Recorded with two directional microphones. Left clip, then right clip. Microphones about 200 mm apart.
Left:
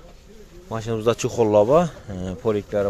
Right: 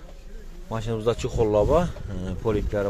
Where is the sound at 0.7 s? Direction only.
15° left (ahead or behind).